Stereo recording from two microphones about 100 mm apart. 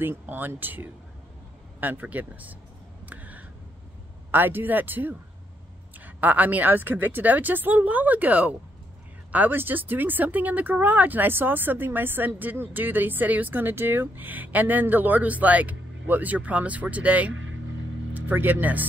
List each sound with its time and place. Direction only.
0.0 s speech: 20° right (ahead or behind)
3.1 s a sound: 15° right (ahead or behind)
4.3 s speech: 20° right (ahead or behind)